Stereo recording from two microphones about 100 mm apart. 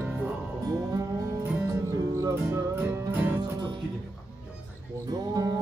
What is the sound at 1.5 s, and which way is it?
Music, 30° right (ahead or behind).